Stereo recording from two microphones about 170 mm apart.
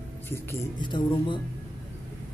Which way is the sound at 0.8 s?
25° left (ahead or behind).